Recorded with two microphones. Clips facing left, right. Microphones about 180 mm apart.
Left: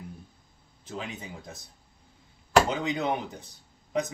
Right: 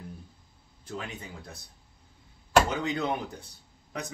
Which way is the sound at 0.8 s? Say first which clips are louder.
Left 1 dB; 20° left (ahead or behind).